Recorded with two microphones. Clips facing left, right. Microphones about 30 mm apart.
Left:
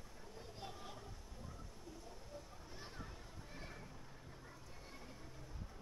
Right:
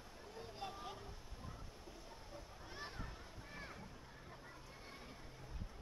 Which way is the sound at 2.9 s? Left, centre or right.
Centre.